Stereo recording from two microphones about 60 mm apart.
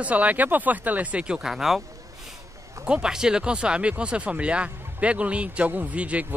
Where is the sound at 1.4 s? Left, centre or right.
Centre.